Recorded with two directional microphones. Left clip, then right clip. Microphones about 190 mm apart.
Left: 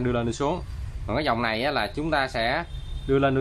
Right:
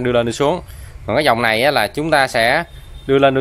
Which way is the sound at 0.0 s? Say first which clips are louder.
Right 10 dB; 40° right (ahead or behind).